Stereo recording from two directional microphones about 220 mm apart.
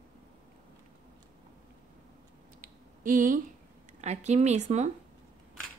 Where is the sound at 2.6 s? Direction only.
40° right (ahead or behind).